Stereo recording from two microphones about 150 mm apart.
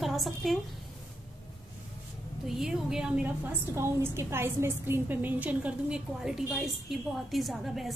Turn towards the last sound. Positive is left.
turn(degrees=0)  # may be behind; listen again after turning